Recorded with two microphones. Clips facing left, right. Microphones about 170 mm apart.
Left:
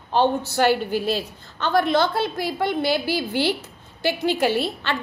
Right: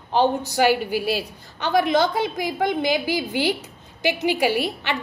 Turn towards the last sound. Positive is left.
turn(degrees=-15)  # may be behind; listen again after turning